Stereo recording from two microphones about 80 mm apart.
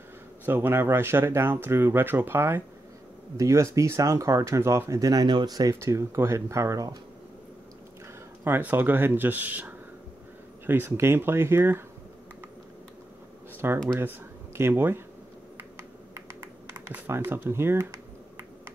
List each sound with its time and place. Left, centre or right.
0.5 s speech: right
5.2 s speech: right
5.8 s speech: right
8.5 s speech: right
13.6 s speech: right
17.1 s speech: right